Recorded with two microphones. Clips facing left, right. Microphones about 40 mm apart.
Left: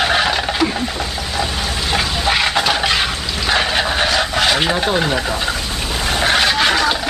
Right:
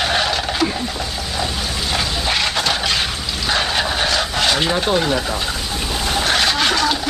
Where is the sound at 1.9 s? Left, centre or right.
Centre.